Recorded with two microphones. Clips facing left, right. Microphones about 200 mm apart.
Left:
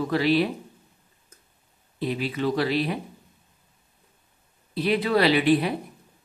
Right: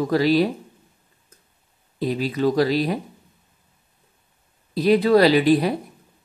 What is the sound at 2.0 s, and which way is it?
Speech, 40° right (ahead or behind).